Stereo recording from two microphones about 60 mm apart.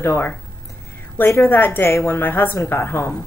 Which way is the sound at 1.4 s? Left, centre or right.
Left.